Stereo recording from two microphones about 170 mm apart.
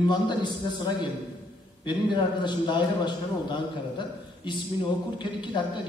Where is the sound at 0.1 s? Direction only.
25° left (ahead or behind).